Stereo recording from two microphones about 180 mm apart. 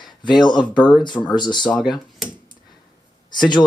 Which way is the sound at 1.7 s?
Centre (ahead or behind).